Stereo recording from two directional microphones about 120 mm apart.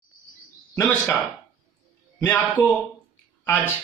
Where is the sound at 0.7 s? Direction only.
10° left (ahead or behind).